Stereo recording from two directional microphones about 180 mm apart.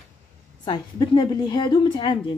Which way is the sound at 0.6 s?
25° left (ahead or behind).